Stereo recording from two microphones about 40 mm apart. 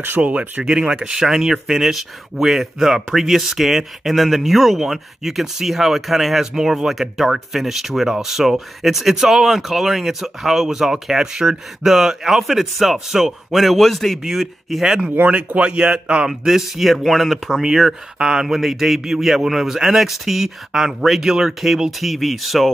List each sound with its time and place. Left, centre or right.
0.2 s speech: right
0.7 s speech: centre
15.2 s speech: right
16.3 s speech: centre